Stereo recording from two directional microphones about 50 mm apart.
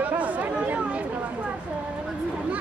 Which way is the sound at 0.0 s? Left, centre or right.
Right.